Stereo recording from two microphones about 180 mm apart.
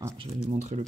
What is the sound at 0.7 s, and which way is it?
Speech, 40° right (ahead or behind).